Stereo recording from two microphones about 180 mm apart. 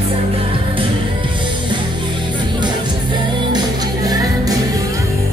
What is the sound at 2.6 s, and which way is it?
Music, 25° right (ahead or behind).